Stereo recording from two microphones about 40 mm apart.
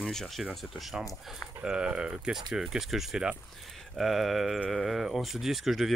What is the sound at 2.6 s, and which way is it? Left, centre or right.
Speech, centre.